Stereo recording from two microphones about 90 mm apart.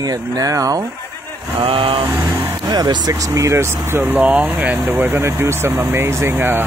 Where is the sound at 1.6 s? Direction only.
85° right.